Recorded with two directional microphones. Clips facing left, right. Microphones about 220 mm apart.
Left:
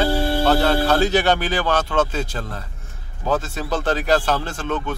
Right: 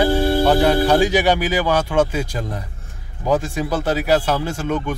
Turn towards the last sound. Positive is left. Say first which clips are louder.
# right 3 dB
turn(degrees=-10)  # may be behind; listen again after turning